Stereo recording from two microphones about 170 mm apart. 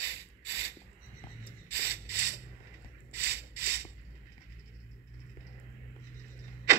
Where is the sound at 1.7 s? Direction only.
70° right (ahead or behind).